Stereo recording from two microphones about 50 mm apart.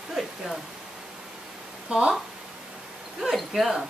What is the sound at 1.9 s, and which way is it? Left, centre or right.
Speech, right.